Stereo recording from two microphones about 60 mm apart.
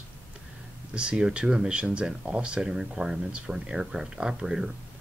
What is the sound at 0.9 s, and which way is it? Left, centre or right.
Speech, centre.